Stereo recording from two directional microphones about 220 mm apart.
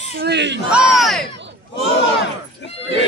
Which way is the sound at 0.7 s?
5° right (ahead or behind).